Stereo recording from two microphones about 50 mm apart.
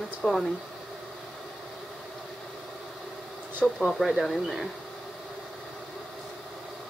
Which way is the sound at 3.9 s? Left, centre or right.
Centre.